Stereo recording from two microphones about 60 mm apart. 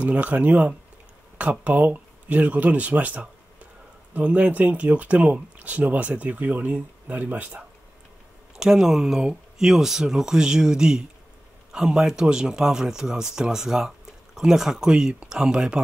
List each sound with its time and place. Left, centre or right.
0.0 s speech: right
8.5 s speech: centre